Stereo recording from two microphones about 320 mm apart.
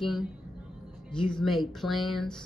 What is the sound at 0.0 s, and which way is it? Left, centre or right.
Speech, centre.